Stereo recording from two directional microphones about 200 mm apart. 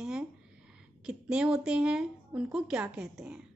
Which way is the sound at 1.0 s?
5° right (ahead or behind).